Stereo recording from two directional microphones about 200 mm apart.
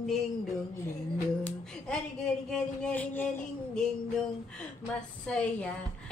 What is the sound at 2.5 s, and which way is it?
Child singing, 5° left (ahead or behind).